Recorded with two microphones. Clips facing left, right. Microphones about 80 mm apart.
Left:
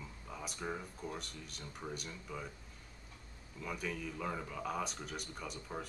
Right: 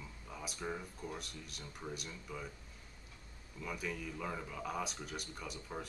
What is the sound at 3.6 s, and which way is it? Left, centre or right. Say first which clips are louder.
Speech: left 1 dB; centre.